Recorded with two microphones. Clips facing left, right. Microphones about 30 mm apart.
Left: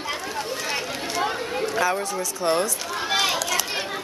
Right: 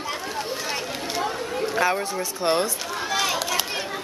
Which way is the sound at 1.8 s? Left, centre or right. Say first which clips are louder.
Right 1 dB; centre.